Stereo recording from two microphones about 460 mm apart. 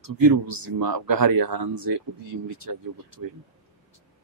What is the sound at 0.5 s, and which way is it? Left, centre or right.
Speech, right.